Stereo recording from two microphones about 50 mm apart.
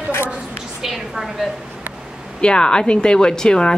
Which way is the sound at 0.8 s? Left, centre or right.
Centre.